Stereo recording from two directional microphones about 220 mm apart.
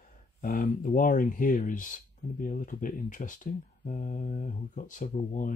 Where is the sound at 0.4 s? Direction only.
40° left (ahead or behind).